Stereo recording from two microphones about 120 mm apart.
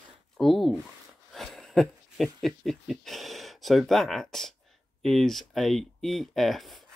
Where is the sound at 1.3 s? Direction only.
Centre (ahead or behind).